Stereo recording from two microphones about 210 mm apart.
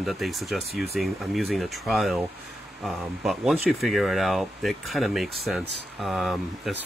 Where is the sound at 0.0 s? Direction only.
Centre (ahead or behind).